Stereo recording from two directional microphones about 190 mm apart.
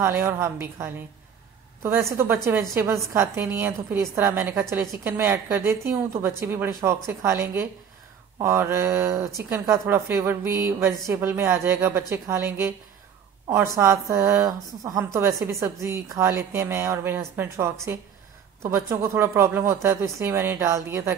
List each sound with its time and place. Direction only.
0.0 s a woman's voice: 10° right (ahead or behind)